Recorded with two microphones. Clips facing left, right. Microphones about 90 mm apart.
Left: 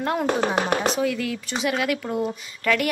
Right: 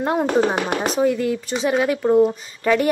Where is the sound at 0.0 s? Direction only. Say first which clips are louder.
Right 4 dB; 20° right (ahead or behind).